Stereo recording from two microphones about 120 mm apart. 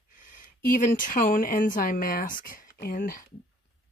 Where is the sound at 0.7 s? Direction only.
90° left.